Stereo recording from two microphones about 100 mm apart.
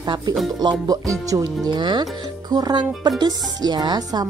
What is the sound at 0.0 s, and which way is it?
Music, 45° right (ahead or behind).